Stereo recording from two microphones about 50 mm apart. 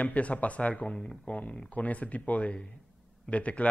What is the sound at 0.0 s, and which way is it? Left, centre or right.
A man's voice, left.